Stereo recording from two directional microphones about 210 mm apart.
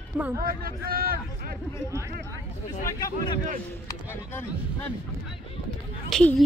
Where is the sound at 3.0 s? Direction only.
25° left (ahead or behind).